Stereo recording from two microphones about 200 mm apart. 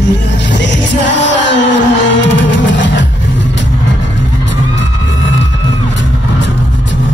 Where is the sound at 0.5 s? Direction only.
65° left (ahead or behind).